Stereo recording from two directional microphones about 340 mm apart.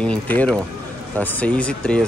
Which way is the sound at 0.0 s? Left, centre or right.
Centre.